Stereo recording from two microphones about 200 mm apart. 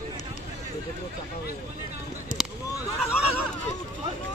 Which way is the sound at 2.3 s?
40° left (ahead or behind).